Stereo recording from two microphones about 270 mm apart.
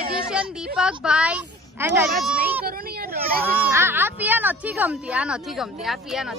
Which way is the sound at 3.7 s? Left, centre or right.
Centre.